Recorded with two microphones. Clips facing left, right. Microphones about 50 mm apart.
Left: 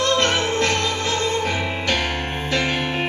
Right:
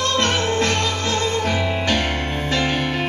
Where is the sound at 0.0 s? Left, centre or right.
Left.